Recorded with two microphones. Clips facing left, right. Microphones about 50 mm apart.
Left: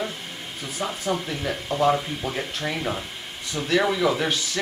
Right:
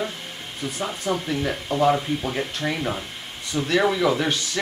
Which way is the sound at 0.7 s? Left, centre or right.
Centre.